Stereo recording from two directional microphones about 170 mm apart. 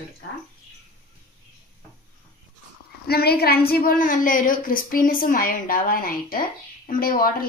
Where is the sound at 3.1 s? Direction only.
65° left (ahead or behind).